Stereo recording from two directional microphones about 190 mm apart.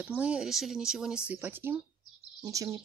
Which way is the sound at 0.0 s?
5° right (ahead or behind).